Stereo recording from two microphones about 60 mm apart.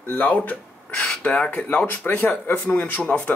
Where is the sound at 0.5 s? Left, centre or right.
Centre.